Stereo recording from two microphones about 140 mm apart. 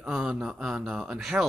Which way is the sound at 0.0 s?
5° right (ahead or behind).